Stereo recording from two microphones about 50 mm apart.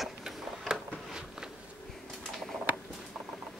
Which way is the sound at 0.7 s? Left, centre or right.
Centre.